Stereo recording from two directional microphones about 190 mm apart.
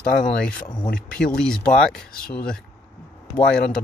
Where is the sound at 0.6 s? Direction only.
20° left (ahead or behind).